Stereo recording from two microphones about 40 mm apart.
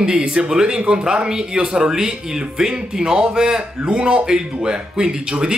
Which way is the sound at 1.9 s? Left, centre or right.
Centre.